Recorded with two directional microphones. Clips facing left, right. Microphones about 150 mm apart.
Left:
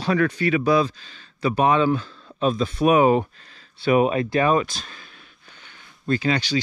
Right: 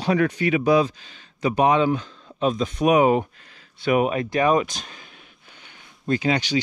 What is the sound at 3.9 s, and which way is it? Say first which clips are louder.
Speech: left 2 dB; 30° left (ahead or behind).